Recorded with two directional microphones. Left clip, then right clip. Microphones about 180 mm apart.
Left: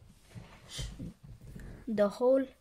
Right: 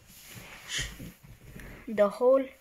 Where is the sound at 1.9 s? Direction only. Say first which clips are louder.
Right 4 dB; 40° left (ahead or behind).